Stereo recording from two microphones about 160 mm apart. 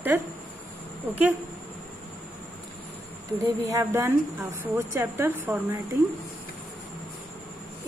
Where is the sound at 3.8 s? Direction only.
15° right (ahead or behind).